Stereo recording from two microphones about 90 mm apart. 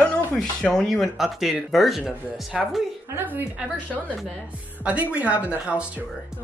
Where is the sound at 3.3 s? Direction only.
20° right (ahead or behind).